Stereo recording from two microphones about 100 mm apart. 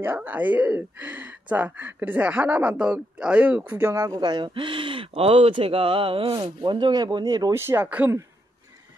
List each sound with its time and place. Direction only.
0.0 s speech: 20° right (ahead or behind)
3.9 s speech: 35° right (ahead or behind)
4.2 s speech: 50° right (ahead or behind)
7.5 s speech: 25° right (ahead or behind)